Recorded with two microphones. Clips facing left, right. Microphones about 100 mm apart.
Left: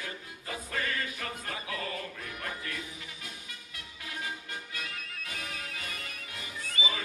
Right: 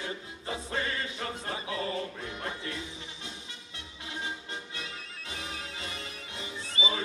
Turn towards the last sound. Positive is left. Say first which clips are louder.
# right 2 dB
turn(degrees=-30)  # may be behind; listen again after turning